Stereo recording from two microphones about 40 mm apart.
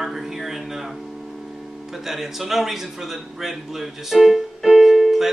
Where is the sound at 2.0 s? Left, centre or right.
Centre.